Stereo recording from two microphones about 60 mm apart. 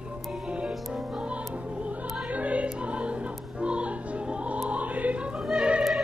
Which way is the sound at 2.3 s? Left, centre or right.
Right.